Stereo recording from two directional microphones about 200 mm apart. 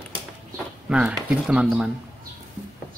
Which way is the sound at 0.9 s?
5° right (ahead or behind).